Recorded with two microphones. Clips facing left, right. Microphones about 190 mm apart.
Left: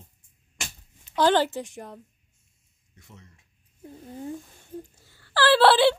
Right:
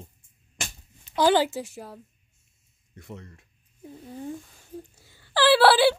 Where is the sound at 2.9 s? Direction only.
60° right (ahead or behind).